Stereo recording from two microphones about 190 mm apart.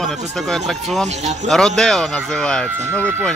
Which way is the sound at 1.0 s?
35° right (ahead or behind).